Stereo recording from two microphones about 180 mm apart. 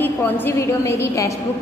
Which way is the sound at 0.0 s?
10° left (ahead or behind).